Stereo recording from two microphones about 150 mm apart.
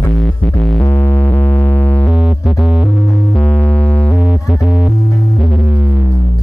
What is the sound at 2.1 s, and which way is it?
Music, 5° right (ahead or behind).